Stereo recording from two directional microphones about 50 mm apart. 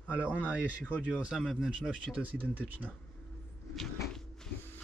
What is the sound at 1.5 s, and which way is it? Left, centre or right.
Speech, centre.